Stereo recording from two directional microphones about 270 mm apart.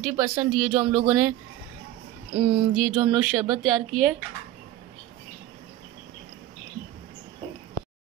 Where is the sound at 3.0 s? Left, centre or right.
Centre.